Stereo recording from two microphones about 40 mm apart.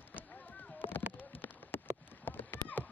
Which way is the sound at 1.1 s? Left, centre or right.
Left.